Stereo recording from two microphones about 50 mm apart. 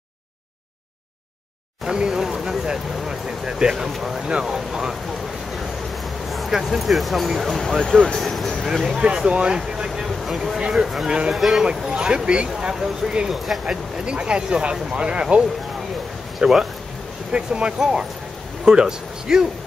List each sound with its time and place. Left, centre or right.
1.9 s speech: centre
6.5 s speech: centre
8.2 s a sound: centre
8.8 s speech: centre
9.6 s vehicle: centre
10.7 s speech: centre
11.3 s speech: centre
11.9 s speech: centre